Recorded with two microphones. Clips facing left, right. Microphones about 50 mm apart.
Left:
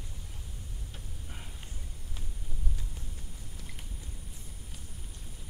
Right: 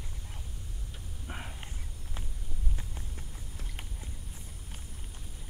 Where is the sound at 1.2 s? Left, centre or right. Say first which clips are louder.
Right 10 dB; right.